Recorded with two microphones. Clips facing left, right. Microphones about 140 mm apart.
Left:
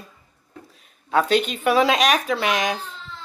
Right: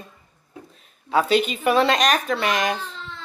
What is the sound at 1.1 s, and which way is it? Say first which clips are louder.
Speech: even; centre (ahead or behind).